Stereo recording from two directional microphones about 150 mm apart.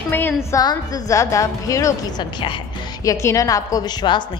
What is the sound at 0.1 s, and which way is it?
A woman's voice, 15° left (ahead or behind).